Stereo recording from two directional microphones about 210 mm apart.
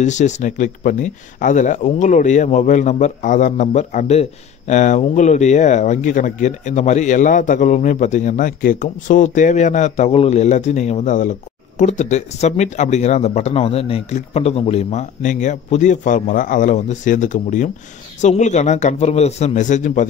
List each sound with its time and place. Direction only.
0.0 s speech: 35° left (ahead or behind)